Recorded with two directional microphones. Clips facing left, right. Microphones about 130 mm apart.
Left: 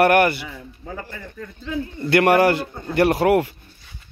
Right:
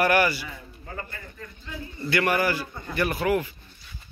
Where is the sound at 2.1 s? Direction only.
70° left (ahead or behind).